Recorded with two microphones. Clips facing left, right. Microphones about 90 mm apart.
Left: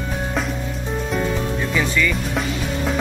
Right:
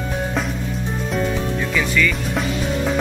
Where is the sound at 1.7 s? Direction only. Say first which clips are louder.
Right 1 dB; 20° left (ahead or behind).